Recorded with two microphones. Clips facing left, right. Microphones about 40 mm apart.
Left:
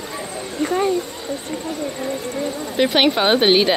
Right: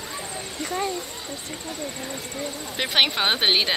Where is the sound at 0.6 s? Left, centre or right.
Left.